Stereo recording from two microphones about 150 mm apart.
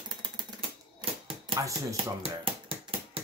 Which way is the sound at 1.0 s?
40° right (ahead or behind).